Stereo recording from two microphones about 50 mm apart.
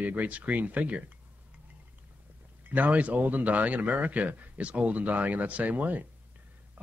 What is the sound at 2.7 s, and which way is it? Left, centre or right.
A man's voice, right.